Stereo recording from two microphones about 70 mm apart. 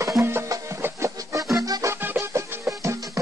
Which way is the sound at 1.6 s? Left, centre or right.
Right.